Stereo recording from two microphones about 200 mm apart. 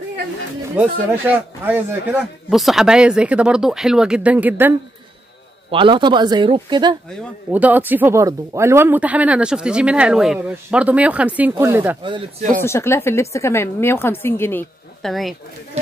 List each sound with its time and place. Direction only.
0.7 s speech: 10° right (ahead or behind)
5.7 s speech: 25° right (ahead or behind)
7.5 s speech: 10° right (ahead or behind)
12.0 s speech: 25° right (ahead or behind)
12.6 s a woman's voice: 15° left (ahead or behind)